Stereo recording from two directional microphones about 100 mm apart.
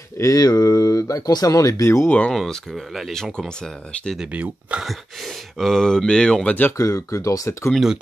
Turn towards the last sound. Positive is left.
turn(degrees=-5)  # may be behind; listen again after turning